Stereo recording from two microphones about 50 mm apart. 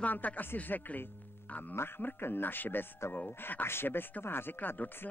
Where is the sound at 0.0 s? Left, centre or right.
Left.